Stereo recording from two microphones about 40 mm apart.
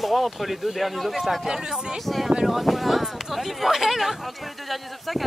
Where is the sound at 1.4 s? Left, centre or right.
Centre.